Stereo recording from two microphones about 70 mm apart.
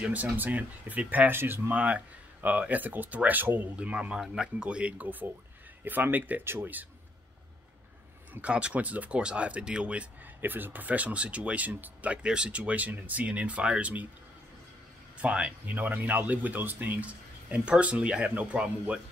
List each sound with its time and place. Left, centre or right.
0.0 s speech: right
8.4 s speech: centre
10.4 s speech: right
15.2 s speech: centre
15.6 s speech: right